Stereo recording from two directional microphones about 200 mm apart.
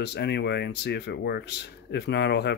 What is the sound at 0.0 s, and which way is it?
Speech, 55° left (ahead or behind).